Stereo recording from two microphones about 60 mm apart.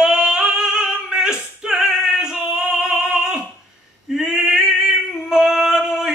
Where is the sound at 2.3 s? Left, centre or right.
Centre.